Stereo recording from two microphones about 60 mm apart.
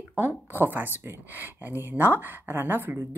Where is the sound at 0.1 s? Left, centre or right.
Right.